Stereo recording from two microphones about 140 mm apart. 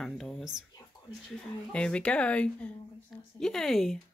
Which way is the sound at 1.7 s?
5° left (ahead or behind).